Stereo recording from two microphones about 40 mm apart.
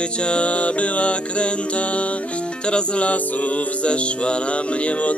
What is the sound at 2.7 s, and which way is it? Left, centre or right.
Music, left.